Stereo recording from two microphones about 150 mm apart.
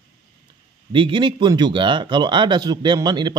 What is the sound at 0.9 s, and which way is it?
Speech, 35° right (ahead or behind).